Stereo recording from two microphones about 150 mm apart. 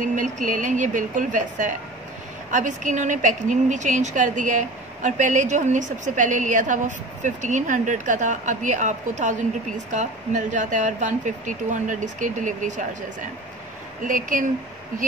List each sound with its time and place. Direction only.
0.0 s a woman's voice: 55° right (ahead or behind)
14.0 s a woman's voice: 60° right (ahead or behind)